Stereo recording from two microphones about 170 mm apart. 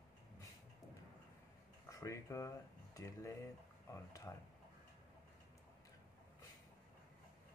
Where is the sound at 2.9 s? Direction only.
20° left (ahead or behind).